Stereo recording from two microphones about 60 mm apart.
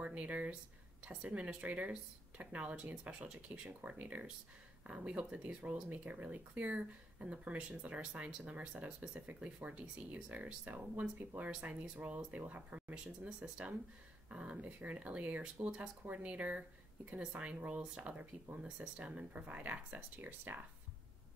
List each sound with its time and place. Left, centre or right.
0.0 s speech: right